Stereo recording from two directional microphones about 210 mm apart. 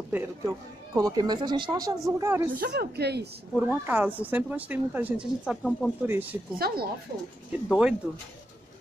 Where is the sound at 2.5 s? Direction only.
45° right (ahead or behind).